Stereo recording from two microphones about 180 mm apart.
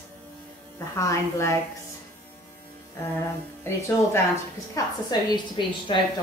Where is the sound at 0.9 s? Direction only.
15° left (ahead or behind).